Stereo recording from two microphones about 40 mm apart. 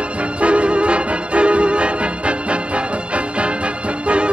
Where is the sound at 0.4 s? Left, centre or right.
Right.